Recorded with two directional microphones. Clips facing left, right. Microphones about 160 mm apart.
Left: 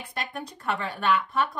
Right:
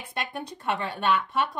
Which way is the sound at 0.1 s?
25° right (ahead or behind).